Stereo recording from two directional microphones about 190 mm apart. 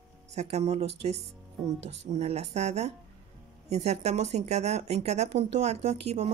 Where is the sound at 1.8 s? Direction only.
35° right (ahead or behind).